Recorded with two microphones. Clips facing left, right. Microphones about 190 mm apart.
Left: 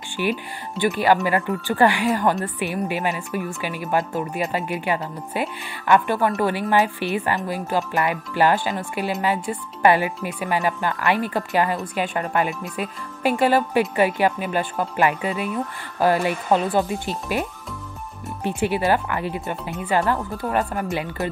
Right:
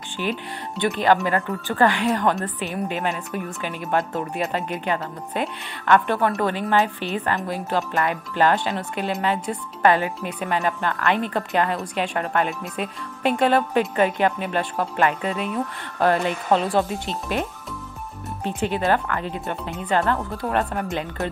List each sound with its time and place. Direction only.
0.2 s speech: 5° left (ahead or behind)